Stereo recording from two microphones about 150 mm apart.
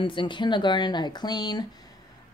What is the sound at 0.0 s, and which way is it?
Speech, 35° left (ahead or behind).